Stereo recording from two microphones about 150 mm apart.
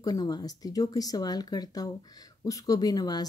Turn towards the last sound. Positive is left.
turn(degrees=25)  # may be behind; listen again after turning